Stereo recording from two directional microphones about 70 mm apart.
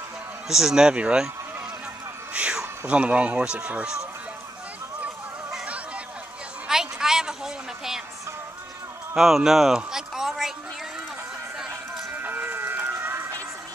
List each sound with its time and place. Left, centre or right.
0.5 s speech: centre
2.3 s music: centre
2.9 s speech: centre
6.7 s a sound: centre
9.1 s speech: centre
12.1 s music: right